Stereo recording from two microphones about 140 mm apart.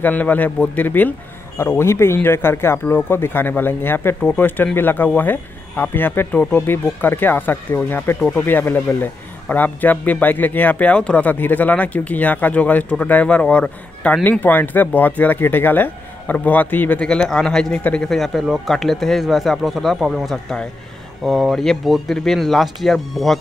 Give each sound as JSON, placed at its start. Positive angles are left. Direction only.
{"t": 0.0, "sound": "a man's voice", "side_deg": 10}